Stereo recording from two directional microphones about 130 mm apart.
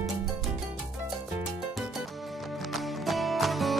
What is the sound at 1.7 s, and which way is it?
Music, centre (ahead or behind).